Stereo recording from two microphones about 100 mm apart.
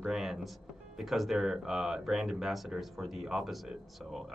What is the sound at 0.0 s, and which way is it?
Speech, centre (ahead or behind).